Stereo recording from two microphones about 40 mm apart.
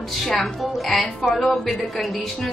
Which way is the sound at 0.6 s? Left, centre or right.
Centre.